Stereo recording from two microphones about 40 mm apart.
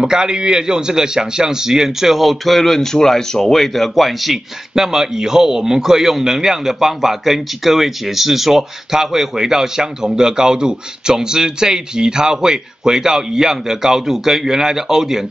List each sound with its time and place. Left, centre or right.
0.0 s a man's voice: centre